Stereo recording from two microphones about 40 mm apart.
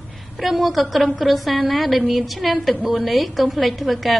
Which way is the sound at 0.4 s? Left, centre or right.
Centre.